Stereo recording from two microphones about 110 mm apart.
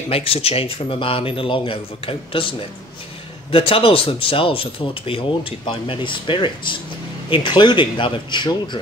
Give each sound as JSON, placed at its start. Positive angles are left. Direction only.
{"t": 0.1, "sound": "speech", "side_deg": 60}
{"t": 3.5, "sound": "speech", "side_deg": 55}